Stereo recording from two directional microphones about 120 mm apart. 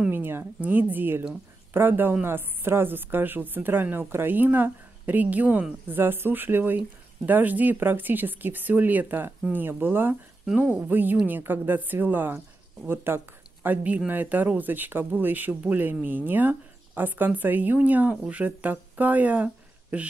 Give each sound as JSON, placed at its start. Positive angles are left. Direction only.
{"t": 0.0, "sound": "a woman's voice", "side_deg": -15}